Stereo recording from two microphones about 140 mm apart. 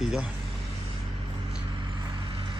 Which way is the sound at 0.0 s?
5° right (ahead or behind).